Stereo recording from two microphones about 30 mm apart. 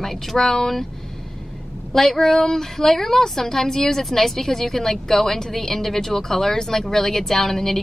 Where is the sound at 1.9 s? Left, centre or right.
Centre.